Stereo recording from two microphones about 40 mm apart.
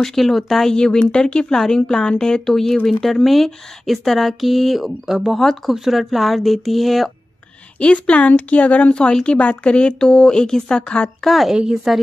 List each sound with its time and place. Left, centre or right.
0.0 s speech: centre
0.7 s speech: centre
7.8 s speech: left; by 10.8 s centre
11.2 s speech: centre
11.5 s speech: centre